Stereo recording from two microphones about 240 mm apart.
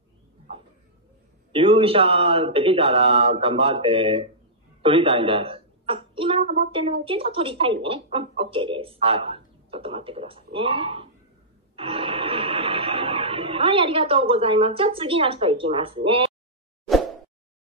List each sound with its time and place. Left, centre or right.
1.5 s a woman's voice: right
11.7 s gasp: right